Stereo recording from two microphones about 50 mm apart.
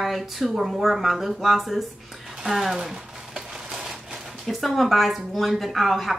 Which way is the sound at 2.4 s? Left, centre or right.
Centre.